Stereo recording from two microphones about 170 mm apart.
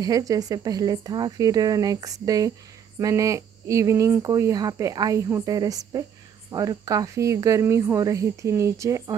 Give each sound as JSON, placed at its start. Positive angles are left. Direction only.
{"t": 0.0, "sound": "speech", "side_deg": -20}